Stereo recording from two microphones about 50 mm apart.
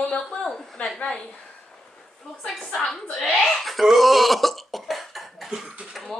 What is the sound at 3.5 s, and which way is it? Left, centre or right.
Cough, centre.